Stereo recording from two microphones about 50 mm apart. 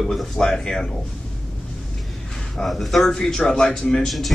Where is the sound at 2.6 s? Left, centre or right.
Centre.